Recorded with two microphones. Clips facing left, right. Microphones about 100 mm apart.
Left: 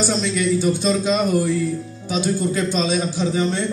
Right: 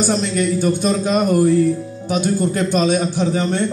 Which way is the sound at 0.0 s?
50° right (ahead or behind).